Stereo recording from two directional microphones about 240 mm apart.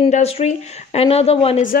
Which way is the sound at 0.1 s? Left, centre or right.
Left.